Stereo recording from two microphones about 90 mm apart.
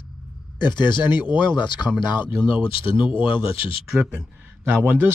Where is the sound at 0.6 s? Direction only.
55° left (ahead or behind); by 3.7 s 90° left.